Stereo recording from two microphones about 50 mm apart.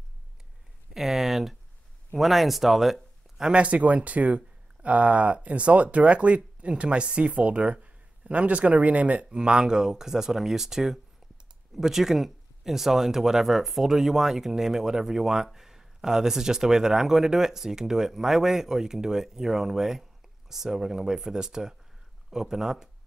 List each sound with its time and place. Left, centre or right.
0.9 s speech: centre
3.5 s speech: right; by 22.8 s centre